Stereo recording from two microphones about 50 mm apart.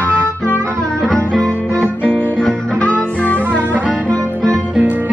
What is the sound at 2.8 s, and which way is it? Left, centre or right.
Music, left.